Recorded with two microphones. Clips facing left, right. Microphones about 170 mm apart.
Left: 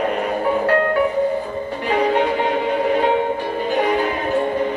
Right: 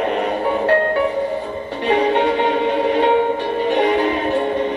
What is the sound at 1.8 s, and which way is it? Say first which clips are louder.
Music: right 2 dB; 25° right (ahead or behind).